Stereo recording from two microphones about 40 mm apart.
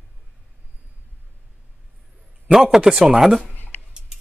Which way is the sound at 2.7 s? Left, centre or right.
Centre.